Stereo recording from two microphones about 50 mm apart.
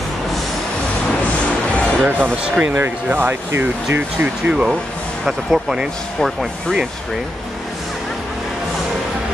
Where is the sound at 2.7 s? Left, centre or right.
Right.